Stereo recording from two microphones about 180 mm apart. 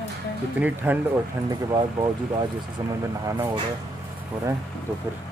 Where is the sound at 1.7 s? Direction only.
25° right (ahead or behind).